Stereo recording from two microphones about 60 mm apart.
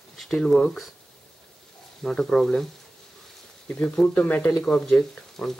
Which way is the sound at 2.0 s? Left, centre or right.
Centre.